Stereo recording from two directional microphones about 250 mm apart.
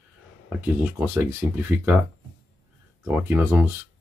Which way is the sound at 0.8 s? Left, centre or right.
Centre.